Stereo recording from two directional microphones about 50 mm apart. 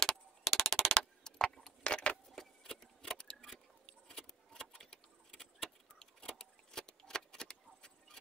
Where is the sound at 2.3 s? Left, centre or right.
Centre.